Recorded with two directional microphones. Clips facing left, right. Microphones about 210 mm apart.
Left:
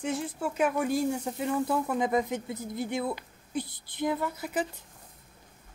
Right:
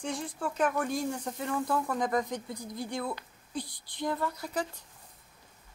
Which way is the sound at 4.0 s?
5° left (ahead or behind).